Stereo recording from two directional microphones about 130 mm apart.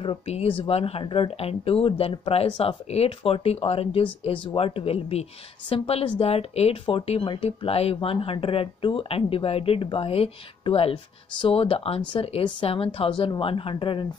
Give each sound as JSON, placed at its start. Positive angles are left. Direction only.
{"t": 0.0, "sound": "speech", "side_deg": 45}